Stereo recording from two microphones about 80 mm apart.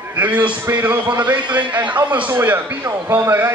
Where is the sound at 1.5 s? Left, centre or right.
Right.